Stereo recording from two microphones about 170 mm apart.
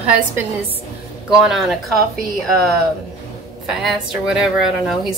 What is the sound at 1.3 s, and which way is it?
Speech, 5° right (ahead or behind).